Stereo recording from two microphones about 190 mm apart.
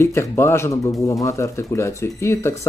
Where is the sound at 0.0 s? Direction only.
15° left (ahead or behind).